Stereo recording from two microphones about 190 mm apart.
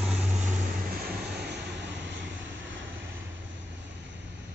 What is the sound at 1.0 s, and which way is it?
Vehicle, 60° right (ahead or behind).